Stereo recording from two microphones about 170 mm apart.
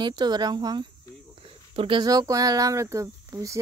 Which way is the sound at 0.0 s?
25° right (ahead or behind).